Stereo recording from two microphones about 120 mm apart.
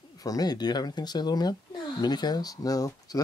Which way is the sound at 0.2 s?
30° left (ahead or behind).